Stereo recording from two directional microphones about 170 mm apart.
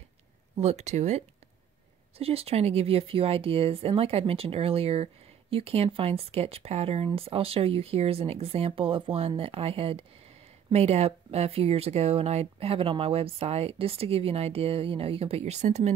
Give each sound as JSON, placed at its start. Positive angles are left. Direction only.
{"t": 0.6, "sound": "speech", "side_deg": -40}